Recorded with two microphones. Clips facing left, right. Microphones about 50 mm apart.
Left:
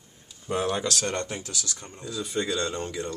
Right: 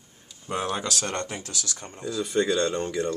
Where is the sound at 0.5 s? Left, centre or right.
Centre.